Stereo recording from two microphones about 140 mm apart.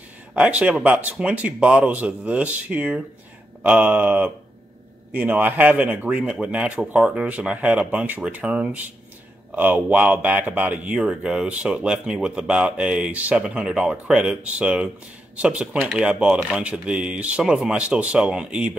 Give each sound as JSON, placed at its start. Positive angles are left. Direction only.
{"t": 0.3, "sound": "speech", "side_deg": -10}